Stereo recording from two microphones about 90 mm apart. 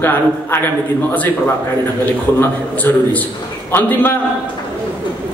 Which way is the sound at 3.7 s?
25° left (ahead or behind).